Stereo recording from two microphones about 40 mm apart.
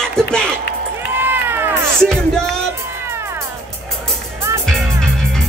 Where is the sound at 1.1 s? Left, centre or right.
Right.